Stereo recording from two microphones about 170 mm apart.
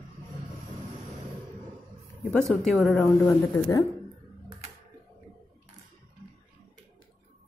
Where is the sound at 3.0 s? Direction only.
15° left (ahead or behind).